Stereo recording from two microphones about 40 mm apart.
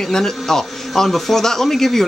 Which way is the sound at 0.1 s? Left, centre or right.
Centre.